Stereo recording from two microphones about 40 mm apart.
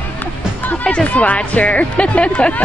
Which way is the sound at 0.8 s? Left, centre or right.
Left.